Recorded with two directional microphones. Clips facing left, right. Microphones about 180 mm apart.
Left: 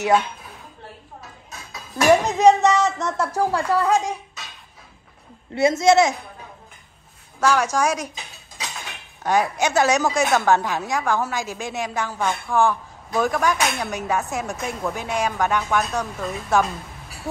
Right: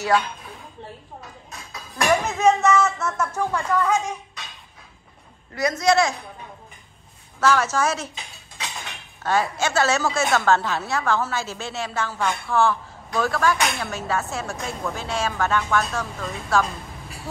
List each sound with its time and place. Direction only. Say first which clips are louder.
1.2 s a sound: even; centre (ahead or behind)
2.2 s speech: left 3 dB; 35° left (ahead or behind)
5.5 s a man's voice: left 4 dB; 25° left (ahead or behind)
7.3 s a woman's voice: left 1 dB; 10° left (ahead or behind)
9.2 s a woman's voice: left 2 dB; 15° left (ahead or behind)